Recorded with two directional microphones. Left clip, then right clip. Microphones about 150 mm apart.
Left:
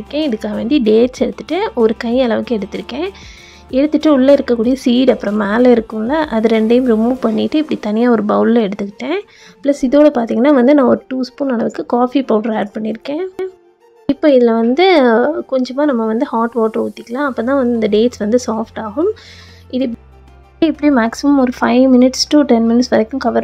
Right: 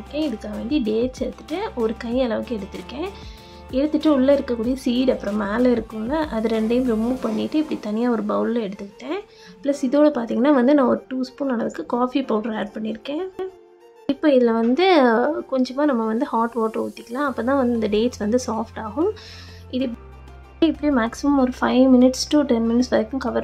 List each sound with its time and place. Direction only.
0.1 s speech: 55° left (ahead or behind)
9.7 s speech: 30° left (ahead or behind)